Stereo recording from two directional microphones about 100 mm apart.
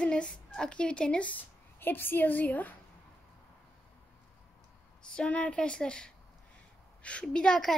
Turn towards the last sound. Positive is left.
turn(degrees=5)  # may be behind; listen again after turning